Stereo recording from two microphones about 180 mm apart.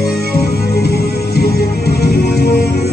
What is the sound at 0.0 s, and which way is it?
Music, 60° left (ahead or behind).